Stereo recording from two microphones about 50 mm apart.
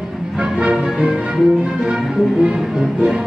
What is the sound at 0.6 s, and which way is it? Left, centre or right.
Music, centre.